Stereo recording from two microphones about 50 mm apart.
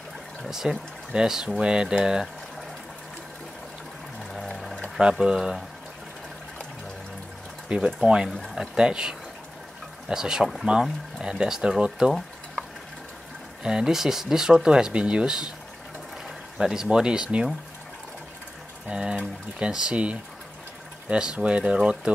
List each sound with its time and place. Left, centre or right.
0.4 s speech: centre
4.3 s water: centre
5.2 s speech: centre
7.7 s speech: centre
12.0 s boiling: centre
13.7 s speech: centre
16.5 s speech: centre
18.9 s speech: right